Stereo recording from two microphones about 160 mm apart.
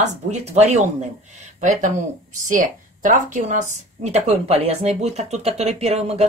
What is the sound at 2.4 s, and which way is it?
Speech, 55° right (ahead or behind).